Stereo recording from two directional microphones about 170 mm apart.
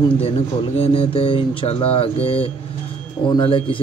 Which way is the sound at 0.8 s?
35° left (ahead or behind).